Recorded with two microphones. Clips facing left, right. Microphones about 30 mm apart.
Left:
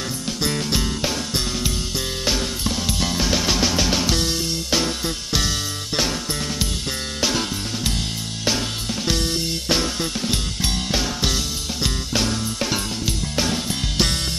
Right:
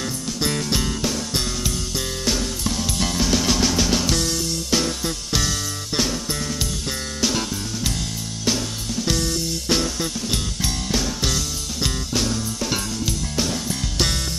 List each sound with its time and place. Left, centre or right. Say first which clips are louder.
0.4 s music: even; centre
7.2 s music: left 1 dB; centre
9.1 s music: left 1 dB; left
9.7 s music: even; left